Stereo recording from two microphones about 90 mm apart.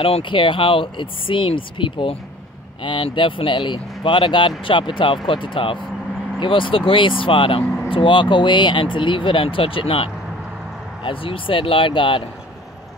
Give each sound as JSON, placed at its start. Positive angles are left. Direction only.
{"t": 0.0, "sound": "speech", "side_deg": 80}
{"t": 11.1, "sound": "speech", "side_deg": 75}